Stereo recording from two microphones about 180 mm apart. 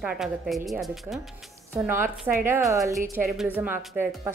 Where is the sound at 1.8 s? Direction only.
10° right (ahead or behind).